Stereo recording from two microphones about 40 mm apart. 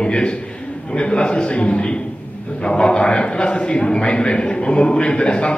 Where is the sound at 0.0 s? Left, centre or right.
Left.